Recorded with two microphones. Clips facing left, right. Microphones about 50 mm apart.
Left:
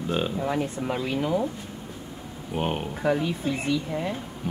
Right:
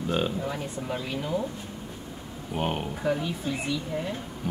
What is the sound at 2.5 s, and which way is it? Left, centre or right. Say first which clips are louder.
Speech: left 1 dB; centre.